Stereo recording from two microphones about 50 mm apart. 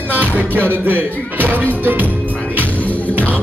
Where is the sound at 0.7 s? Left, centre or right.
Right.